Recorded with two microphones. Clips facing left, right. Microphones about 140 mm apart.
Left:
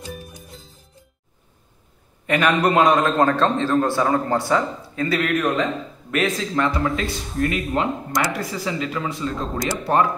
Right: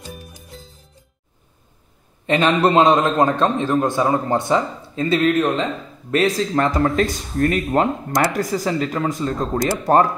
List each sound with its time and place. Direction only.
0.1 s music: centre (ahead or behind)
2.2 s a man's voice: 25° right (ahead or behind); by 10.0 s 40° right (ahead or behind)